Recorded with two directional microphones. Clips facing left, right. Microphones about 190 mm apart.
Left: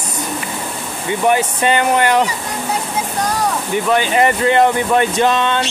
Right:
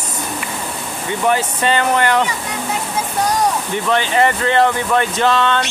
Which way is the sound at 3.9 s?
15° left (ahead or behind).